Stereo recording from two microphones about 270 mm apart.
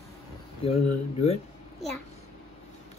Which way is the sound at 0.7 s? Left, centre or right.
Left.